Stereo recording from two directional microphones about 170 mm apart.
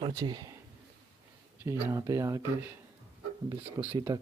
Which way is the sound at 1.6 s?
20° right (ahead or behind).